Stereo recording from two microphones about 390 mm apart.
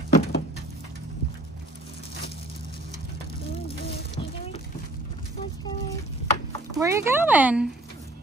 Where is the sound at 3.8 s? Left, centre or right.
Centre.